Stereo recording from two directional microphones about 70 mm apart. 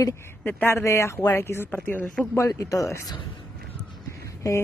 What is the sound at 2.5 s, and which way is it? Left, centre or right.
Speech, left.